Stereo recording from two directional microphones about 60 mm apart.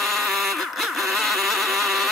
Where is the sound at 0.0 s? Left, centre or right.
Centre.